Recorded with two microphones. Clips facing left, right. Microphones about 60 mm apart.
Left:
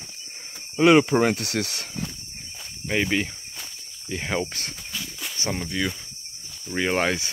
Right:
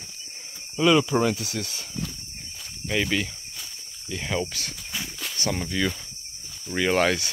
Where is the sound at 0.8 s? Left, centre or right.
Left.